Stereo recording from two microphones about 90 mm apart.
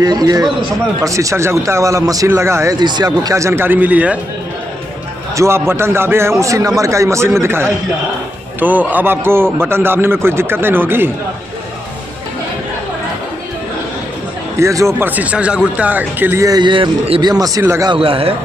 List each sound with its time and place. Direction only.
0.0 s a man's voice: 45° right (ahead or behind)
2.8 s speech: 55° right (ahead or behind)
3.3 s a man's voice: 35° right (ahead or behind); by 4.2 s 15° right (ahead or behind)
5.3 s a man's voice: 30° right (ahead or behind)
6.4 s a man's voice: 40° right (ahead or behind)
14.6 s a man's voice: 35° right (ahead or behind)
15.0 s speech: 20° right (ahead or behind)
16.3 s a man's voice: 40° right (ahead or behind)
16.6 s a man's voice: 65° right (ahead or behind); by 17.6 s 45° right (ahead or behind)
17.9 s a man's voice: 90° right